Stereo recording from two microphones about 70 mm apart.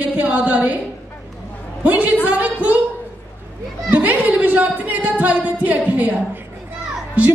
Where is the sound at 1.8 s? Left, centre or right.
Right.